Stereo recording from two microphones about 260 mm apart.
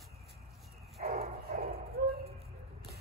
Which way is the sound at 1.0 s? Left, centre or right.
Right.